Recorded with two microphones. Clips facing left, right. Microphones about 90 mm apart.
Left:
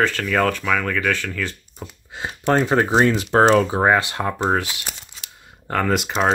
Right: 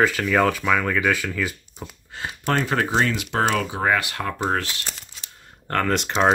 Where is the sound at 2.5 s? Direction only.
20° left (ahead or behind); by 6.3 s 5° left (ahead or behind).